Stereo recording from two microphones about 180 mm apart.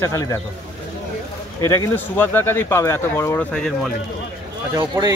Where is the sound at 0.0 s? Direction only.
20° left (ahead or behind).